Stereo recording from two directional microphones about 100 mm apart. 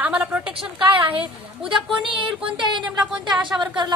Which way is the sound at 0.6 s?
65° right (ahead or behind).